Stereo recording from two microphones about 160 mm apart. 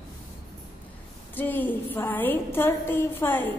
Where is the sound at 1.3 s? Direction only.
10° left (ahead or behind).